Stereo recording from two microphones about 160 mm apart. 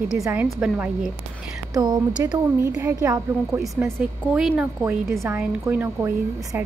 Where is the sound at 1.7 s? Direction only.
25° right (ahead or behind).